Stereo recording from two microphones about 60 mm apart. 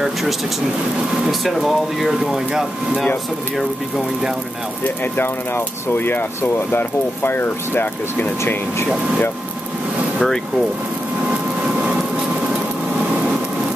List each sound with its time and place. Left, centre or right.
0.0 s speech: centre
4.8 s speech: left
10.1 s speech: centre
11.2 s a sound: centre